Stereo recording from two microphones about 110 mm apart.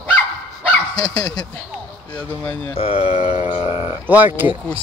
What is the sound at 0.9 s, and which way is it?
Speech, 35° left (ahead or behind).